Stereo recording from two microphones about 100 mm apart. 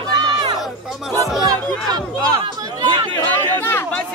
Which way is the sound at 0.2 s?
50° right (ahead or behind).